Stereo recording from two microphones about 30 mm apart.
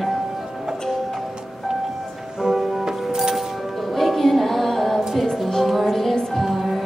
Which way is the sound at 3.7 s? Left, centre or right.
Centre.